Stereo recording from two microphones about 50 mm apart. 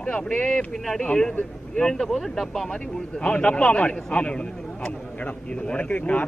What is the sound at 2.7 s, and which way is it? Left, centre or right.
A man's voice, left.